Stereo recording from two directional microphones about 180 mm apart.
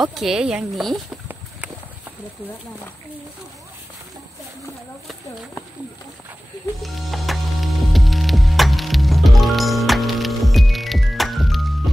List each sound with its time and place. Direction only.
0.0 s a woman's voice: centre (ahead or behind)
6.8 s music: centre (ahead or behind)